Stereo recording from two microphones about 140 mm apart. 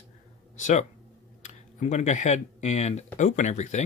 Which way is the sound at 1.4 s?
55° left (ahead or behind).